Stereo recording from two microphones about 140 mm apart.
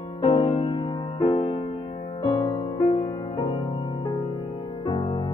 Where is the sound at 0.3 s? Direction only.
25° left (ahead or behind).